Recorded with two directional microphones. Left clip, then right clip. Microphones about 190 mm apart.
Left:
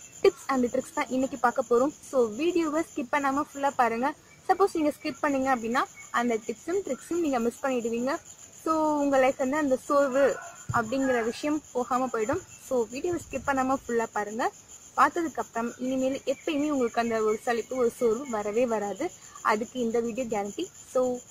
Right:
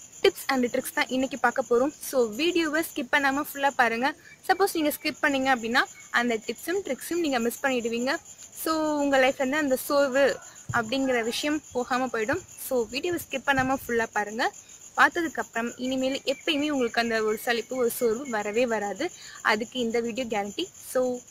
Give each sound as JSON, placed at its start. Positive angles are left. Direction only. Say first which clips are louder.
{"t": 0.2, "sound": "a woman's voice", "louder": "even", "side_deg": -5}
{"t": 1.5, "sound": "speech", "louder": "even", "side_deg": -25}
{"t": 2.3, "sound": "a woman's voice", "louder": "right 2 dB", "side_deg": -5}